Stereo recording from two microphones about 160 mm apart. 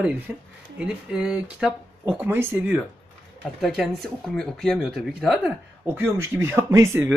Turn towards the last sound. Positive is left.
turn(degrees=-15)  # may be behind; listen again after turning